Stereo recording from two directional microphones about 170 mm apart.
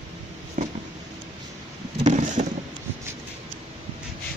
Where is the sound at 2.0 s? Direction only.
45° right (ahead or behind).